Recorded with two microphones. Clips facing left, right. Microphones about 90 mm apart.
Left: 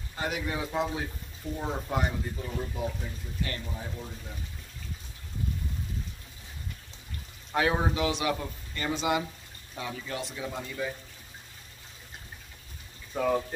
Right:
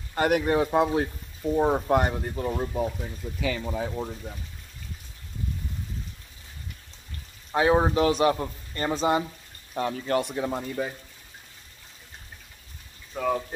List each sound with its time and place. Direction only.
0.1 s speech: 60° right (ahead or behind)
3.3 s speech: 90° right
7.5 s speech: 25° right (ahead or behind)
7.9 s speech: 45° right (ahead or behind)
9.8 s speech: 55° right (ahead or behind)
13.1 s speech: centre (ahead or behind)